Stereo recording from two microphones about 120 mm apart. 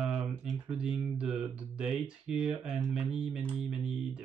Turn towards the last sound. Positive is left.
turn(degrees=-5)  # may be behind; listen again after turning